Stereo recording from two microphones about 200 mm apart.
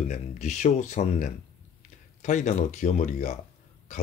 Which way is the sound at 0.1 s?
40° left (ahead or behind).